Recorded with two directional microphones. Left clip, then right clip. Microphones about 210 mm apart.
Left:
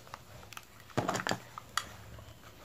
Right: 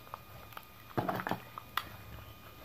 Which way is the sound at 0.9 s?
20° left (ahead or behind).